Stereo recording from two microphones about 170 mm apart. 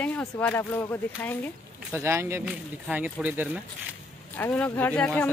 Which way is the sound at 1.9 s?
15° right (ahead or behind).